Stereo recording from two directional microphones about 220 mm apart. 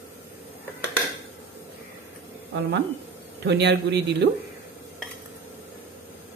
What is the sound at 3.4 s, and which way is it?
Speech, 50° right (ahead or behind).